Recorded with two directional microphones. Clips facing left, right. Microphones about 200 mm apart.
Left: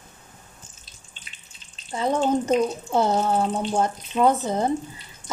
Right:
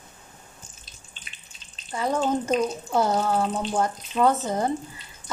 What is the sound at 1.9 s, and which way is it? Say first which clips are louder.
A woman's voice: left 2 dB; 25° left (ahead or behind).